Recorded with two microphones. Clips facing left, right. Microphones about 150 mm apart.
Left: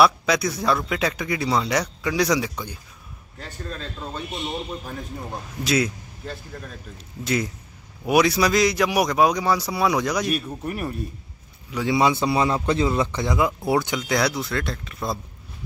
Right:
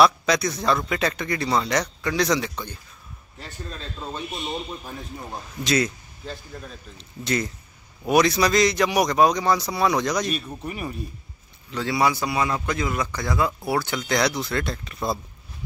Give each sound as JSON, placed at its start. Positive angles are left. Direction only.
{"t": 0.0, "sound": "speech", "side_deg": 5}
{"t": 5.6, "sound": "a man's voice", "side_deg": 5}
{"t": 11.7, "sound": "a man's voice", "side_deg": 15}